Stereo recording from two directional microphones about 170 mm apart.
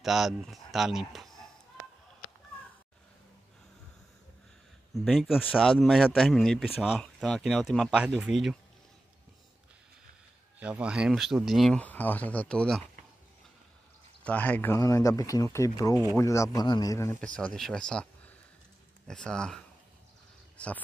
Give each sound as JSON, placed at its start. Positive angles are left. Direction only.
{"t": 0.0, "sound": "speech", "side_deg": 0}
{"t": 4.9, "sound": "speech", "side_deg": 0}
{"t": 10.6, "sound": "speech", "side_deg": -5}
{"t": 14.2, "sound": "speech", "side_deg": 10}
{"t": 17.6, "sound": "speech", "side_deg": 5}